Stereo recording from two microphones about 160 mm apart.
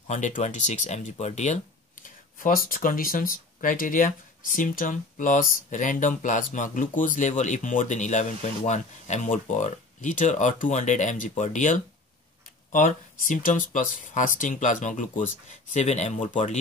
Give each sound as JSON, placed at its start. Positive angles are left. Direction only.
{"t": 0.1, "sound": "speech", "side_deg": 50}
{"t": 2.0, "sound": "speech", "side_deg": 60}